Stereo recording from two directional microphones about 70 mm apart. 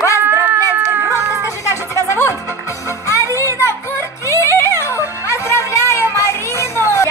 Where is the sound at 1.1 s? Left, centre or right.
Right.